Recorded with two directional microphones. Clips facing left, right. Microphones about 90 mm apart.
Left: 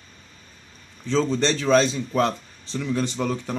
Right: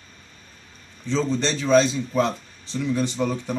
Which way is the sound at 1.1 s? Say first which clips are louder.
Left 2 dB; 15° right (ahead or behind).